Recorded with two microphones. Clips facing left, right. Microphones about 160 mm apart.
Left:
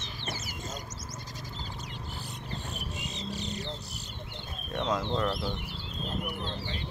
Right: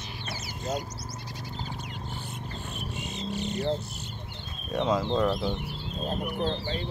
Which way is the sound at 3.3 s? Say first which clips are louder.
Right 7 dB; 35° left (ahead or behind).